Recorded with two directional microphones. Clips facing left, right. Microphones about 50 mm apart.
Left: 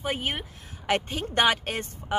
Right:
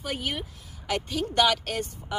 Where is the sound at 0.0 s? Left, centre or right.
Left.